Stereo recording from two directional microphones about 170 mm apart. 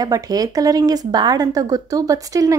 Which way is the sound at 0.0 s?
20° right (ahead or behind).